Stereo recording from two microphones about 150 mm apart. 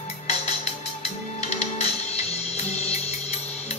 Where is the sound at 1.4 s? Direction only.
45° left (ahead or behind).